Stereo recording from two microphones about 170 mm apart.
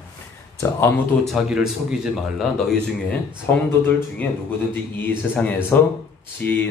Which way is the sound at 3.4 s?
10° left (ahead or behind).